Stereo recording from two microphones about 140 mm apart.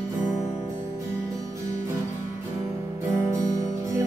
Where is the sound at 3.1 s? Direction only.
25° right (ahead or behind).